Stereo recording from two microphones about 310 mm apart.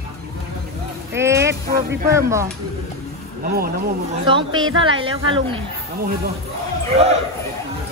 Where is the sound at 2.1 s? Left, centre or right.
Centre.